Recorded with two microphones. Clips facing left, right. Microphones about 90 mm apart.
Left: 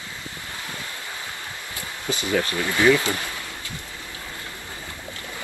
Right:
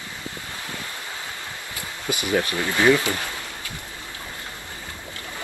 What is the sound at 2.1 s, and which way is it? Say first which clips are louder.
Speech: right 1 dB; 20° right (ahead or behind).